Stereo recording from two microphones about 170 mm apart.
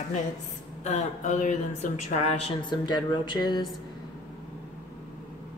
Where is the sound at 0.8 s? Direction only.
40° left (ahead or behind).